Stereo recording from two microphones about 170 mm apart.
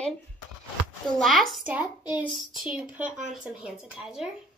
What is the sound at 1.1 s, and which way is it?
Speech, centre (ahead or behind).